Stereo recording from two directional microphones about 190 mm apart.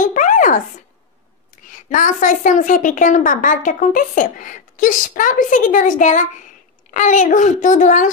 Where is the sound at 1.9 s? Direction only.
45° left (ahead or behind).